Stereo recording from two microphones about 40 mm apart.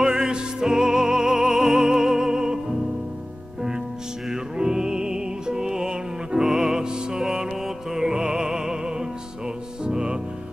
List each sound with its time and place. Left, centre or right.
0.0 s music: centre
4.3 s music: centre